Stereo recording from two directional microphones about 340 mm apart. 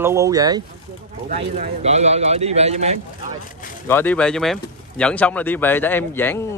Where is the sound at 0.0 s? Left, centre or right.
Centre.